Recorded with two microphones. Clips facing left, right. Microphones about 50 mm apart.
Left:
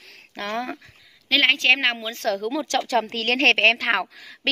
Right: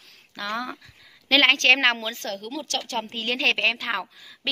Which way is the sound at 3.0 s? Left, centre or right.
Left.